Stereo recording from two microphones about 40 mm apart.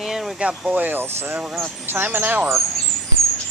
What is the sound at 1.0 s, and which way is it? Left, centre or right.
Speech, right.